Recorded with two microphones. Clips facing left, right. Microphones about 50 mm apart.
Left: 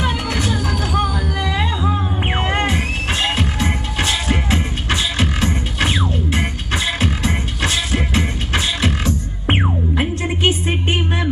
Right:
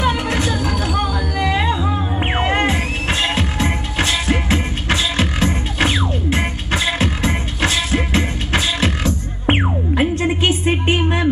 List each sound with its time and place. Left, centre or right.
0.0 s music: right
9.5 s music: centre
10.1 s music: right